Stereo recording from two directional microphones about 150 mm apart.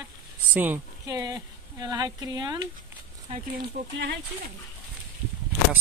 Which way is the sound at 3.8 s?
60° right (ahead or behind).